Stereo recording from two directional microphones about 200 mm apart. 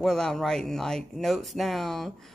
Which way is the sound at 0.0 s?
5° left (ahead or behind).